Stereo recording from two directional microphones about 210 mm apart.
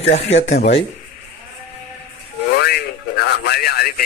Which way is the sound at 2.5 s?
50° left (ahead or behind).